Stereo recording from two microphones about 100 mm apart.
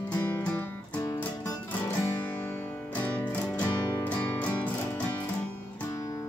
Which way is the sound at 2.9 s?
15° left (ahead or behind).